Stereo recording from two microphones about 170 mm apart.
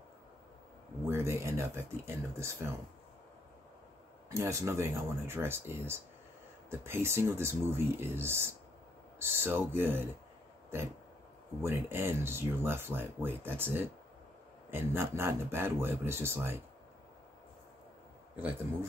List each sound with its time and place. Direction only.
1.0 s speech: 15° right (ahead or behind)
4.3 s speech: 20° right (ahead or behind)
18.3 s speech: 10° right (ahead or behind)